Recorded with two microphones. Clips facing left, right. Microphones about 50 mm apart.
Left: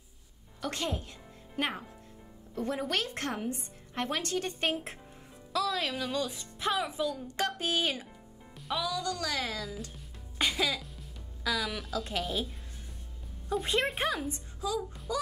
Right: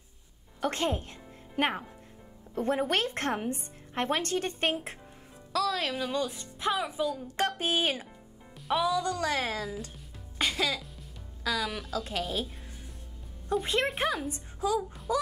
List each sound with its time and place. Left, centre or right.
0.6 s a woman's voice: right
4.3 s speech: centre
5.5 s speech: centre
7.3 s a woman's voice: right
8.5 s music: centre
9.0 s a woman's voice: right
9.9 s music: centre
11.4 s speech: centre
13.5 s speech: centre
15.1 s a woman's voice: right